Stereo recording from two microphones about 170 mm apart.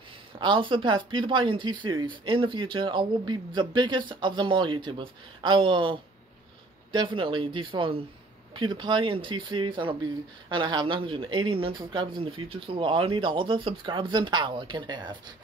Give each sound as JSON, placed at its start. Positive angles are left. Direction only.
{"t": 0.4, "sound": "speech", "side_deg": -30}